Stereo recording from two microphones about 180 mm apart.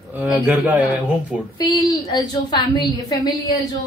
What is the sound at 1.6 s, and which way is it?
A woman's voice, 20° left (ahead or behind).